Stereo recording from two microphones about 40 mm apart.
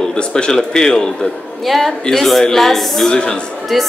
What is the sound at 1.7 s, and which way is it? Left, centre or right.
A woman's voice, centre.